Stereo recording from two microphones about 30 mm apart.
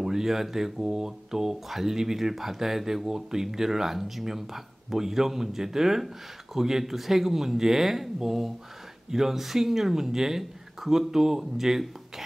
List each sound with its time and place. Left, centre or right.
0.0 s speech: centre